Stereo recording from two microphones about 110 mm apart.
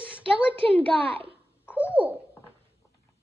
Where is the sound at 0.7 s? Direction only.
15° left (ahead or behind).